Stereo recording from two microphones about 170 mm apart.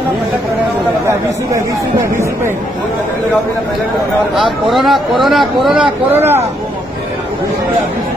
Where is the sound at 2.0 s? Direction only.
15° right (ahead or behind).